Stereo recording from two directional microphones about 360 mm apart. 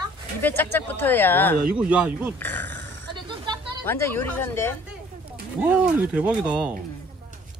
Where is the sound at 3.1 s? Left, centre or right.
Centre.